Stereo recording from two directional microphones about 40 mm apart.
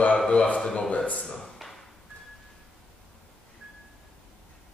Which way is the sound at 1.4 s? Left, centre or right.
Centre.